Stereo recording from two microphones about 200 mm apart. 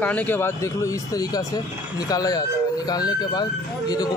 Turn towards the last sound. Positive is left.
turn(degrees=20)  # may be behind; listen again after turning